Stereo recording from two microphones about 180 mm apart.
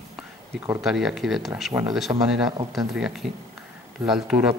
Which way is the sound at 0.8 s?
Centre (ahead or behind).